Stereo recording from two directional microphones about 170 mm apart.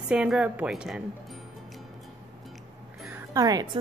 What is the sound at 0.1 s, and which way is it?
Speech, 5° right (ahead or behind).